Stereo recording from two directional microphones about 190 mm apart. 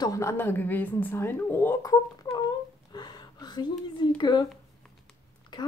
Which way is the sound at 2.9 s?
20° left (ahead or behind).